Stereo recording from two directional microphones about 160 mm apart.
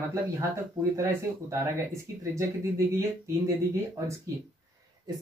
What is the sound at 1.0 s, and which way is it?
Speech, 15° right (ahead or behind).